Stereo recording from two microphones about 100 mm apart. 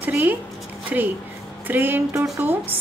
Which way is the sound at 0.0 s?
15° right (ahead or behind).